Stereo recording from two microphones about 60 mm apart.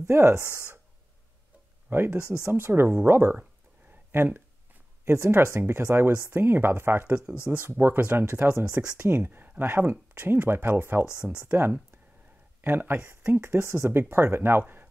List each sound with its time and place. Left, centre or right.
0.0 s speech: right
1.9 s speech: right
5.0 s speech: right
9.1 s speech: right